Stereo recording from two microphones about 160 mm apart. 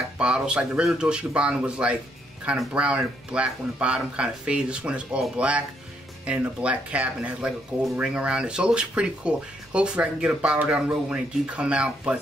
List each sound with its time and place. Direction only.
0.2 s speech: 5° right (ahead or behind)